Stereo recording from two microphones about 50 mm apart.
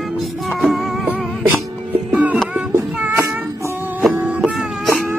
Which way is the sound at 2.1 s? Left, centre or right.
Right.